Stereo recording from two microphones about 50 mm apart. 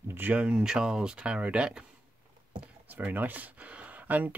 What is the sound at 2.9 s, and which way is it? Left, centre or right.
Speech, right.